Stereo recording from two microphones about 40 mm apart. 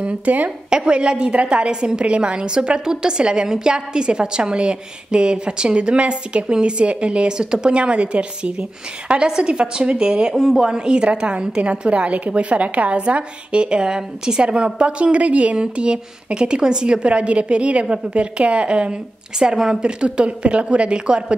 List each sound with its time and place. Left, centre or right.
0.0 s speech: right
0.7 s a woman's voice: right
19.3 s a woman's voice: centre
19.8 s a woman's voice: right